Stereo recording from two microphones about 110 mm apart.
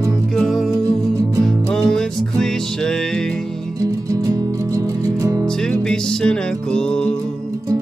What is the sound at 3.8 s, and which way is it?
Music, 30° right (ahead or behind).